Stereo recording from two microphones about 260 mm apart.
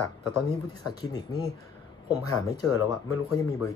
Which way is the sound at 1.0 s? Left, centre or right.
Centre.